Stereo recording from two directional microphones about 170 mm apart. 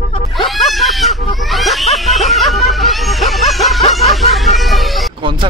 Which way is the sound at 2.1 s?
Centre (ahead or behind).